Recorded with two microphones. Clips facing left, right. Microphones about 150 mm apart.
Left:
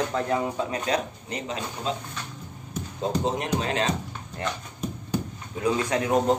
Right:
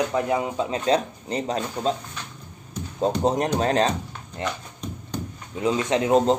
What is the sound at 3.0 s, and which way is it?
Speech, 40° right (ahead or behind).